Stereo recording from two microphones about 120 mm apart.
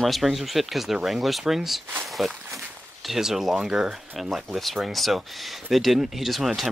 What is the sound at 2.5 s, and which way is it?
Speech, centre (ahead or behind).